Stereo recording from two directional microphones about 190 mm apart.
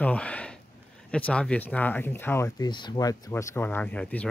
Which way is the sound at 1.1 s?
5° left (ahead or behind).